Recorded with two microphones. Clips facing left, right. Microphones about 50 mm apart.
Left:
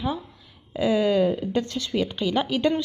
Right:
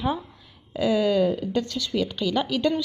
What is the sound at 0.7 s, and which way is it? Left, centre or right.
A woman's voice, centre.